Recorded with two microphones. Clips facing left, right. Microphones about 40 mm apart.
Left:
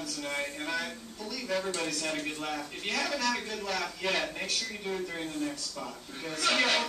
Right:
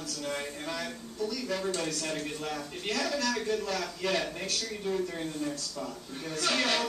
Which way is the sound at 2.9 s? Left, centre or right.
Centre.